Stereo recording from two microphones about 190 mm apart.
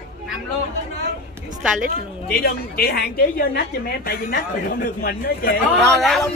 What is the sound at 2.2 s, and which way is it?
A woman's voice, 55° left (ahead or behind).